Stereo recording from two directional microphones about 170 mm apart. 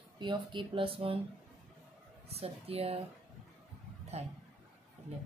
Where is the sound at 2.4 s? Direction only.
35° right (ahead or behind).